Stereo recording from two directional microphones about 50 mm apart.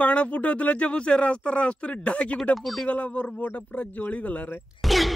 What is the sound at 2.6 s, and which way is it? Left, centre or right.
Speech, centre.